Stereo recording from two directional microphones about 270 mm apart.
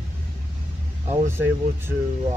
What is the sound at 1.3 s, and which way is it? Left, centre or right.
Speech, centre.